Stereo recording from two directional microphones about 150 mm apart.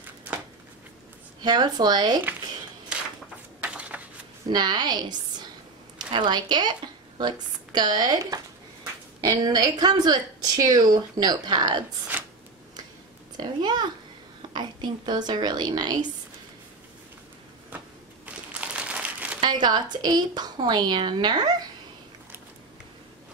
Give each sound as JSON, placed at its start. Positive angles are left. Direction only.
{"t": 1.4, "sound": "a woman's voice", "side_deg": -30}
{"t": 3.6, "sound": "a sound", "side_deg": -10}
{"t": 4.5, "sound": "a woman's voice", "side_deg": -30}
{"t": 12.1, "sound": "a sound", "side_deg": -10}
{"t": 13.4, "sound": "a woman's voice", "side_deg": -30}
{"t": 17.6, "sound": "crumpling", "side_deg": -10}
{"t": 19.4, "sound": "a woman's voice", "side_deg": -30}